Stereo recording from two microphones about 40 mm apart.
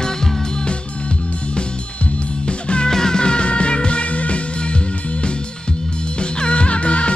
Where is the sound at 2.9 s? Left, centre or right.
Centre; by 4.8 s left.